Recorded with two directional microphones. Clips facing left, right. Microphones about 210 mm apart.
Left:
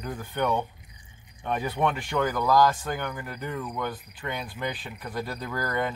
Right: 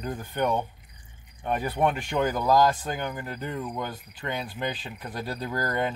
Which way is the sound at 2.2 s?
15° right (ahead or behind).